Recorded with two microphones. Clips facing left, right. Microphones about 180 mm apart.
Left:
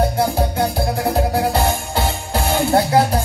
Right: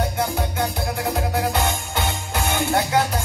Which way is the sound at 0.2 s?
30° left (ahead or behind).